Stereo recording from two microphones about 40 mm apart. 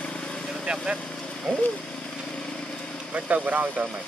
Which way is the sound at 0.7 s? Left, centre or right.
Centre.